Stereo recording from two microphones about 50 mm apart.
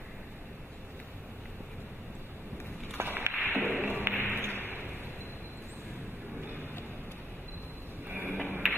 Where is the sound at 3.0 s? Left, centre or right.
Right.